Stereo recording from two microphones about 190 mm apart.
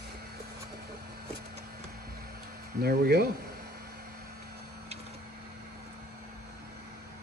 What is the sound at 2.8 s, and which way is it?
Speech, 55° right (ahead or behind).